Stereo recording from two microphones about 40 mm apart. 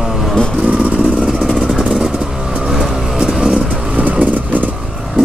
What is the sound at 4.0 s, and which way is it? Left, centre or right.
Vehicle, right.